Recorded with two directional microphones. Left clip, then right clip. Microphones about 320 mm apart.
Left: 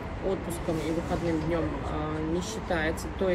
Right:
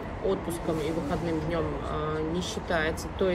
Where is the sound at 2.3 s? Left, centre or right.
Centre.